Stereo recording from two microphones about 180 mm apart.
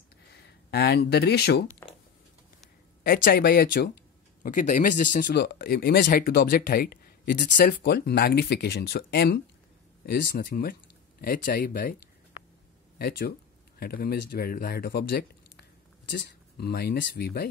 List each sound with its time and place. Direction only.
0.3 s speech: 65° left (ahead or behind)
3.0 s speech: 55° left (ahead or behind)
4.4 s speech: 45° left (ahead or behind)
13.7 s speech: 55° left (ahead or behind)